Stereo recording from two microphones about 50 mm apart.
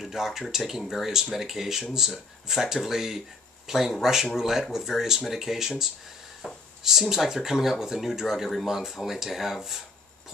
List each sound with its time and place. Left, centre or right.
0.0 s speech: centre
6.4 s speech: centre
6.8 s speech: centre